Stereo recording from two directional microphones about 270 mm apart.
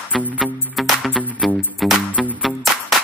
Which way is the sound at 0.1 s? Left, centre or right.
Centre.